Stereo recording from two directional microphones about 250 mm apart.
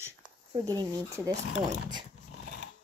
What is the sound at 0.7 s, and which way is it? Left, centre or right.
Speech, centre.